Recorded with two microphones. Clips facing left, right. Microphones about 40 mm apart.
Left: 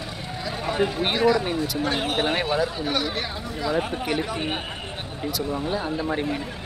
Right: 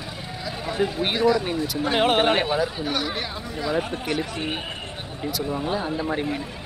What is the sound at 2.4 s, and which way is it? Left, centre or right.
Speech, centre.